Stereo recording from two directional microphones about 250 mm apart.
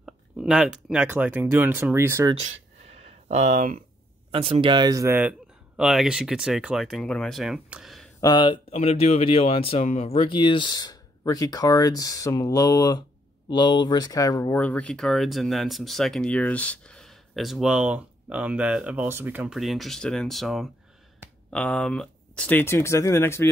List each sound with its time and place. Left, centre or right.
0.0 s speech: centre
2.3 s a sound: right
4.3 s speech: right; by 8.1 s centre
8.2 s speech: centre